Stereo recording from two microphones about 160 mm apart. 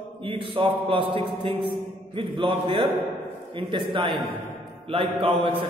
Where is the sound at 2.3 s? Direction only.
35° right (ahead or behind).